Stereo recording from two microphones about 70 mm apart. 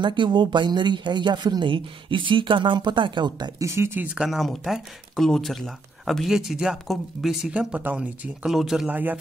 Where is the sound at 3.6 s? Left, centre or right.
Right.